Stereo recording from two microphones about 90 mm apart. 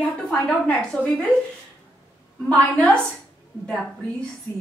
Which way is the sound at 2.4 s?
10° left (ahead or behind).